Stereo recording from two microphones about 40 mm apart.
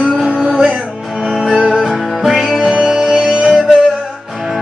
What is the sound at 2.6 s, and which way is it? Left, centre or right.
Music, right.